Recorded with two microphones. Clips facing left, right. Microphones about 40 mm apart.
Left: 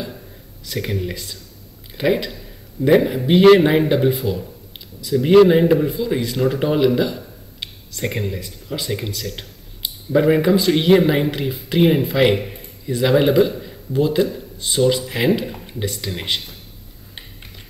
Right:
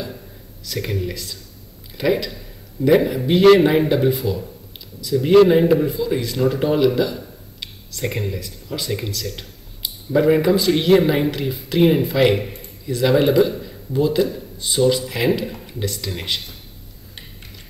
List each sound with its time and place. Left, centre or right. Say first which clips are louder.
0.7 s a man's voice: left 1 dB; centre